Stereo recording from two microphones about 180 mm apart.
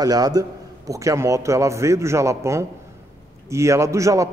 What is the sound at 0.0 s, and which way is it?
A man's voice, 20° right (ahead or behind).